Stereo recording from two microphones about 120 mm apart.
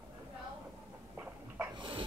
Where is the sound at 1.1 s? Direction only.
15° right (ahead or behind).